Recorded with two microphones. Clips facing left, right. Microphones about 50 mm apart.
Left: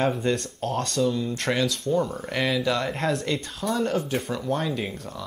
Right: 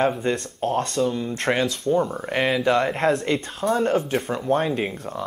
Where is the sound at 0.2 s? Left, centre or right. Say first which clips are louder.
Right 2 dB; right.